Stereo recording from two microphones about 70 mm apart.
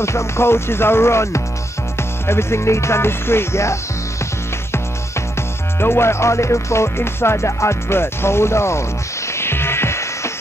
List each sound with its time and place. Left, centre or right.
0.0 s music: left
5.8 s music: left